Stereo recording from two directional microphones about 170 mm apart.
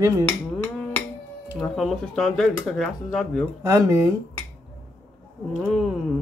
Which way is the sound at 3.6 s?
20° right (ahead or behind).